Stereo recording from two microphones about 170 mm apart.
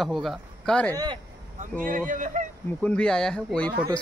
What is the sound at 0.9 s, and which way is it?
Speech, 25° right (ahead or behind).